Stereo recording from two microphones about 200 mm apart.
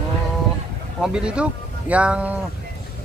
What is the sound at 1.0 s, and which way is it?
A woman's voice, 5° right (ahead or behind).